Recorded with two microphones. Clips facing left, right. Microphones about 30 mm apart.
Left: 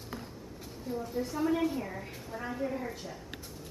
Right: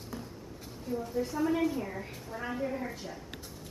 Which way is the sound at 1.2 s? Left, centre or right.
Left.